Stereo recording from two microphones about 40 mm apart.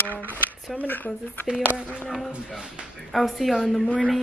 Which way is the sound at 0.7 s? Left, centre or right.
Left.